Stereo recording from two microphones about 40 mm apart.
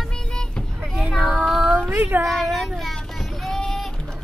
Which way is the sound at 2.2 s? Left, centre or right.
Centre.